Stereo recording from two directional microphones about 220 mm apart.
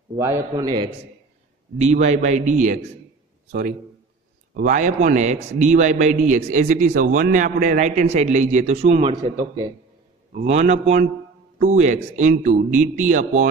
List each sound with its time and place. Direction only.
0.1 s a man's voice: 15° right (ahead or behind)
2.0 s speech: 30° right (ahead or behind)
4.6 s speech: 35° right (ahead or behind)
10.3 s speech: 30° right (ahead or behind)